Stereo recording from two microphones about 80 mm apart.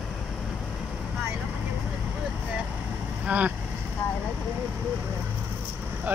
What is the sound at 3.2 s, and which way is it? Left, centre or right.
Speech, centre.